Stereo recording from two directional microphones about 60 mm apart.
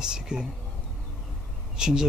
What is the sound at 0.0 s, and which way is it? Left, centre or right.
Speech, centre.